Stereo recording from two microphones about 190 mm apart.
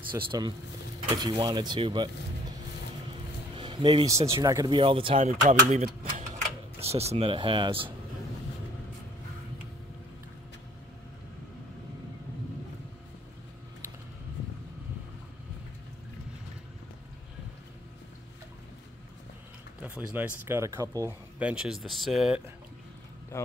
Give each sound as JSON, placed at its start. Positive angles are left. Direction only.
{"t": 0.1, "sound": "speech", "side_deg": -25}
{"t": 3.5, "sound": "speech", "side_deg": -25}
{"t": 5.5, "sound": "speech", "side_deg": -40}
{"t": 19.8, "sound": "speech", "side_deg": -10}
{"t": 23.3, "sound": "a man's voice", "side_deg": 15}